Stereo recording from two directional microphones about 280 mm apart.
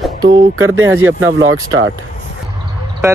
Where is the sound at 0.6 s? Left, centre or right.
Right.